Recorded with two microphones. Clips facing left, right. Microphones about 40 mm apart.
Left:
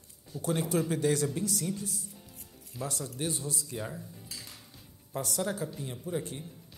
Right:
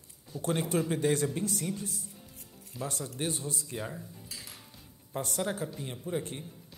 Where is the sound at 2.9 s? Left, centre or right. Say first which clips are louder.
Right 1 dB; right.